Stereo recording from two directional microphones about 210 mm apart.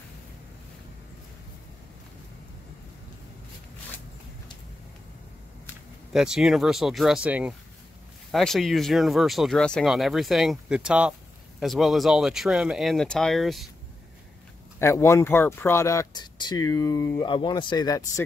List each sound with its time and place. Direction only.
6.1 s speech: 5° right (ahead or behind)
14.8 s speech: 15° left (ahead or behind)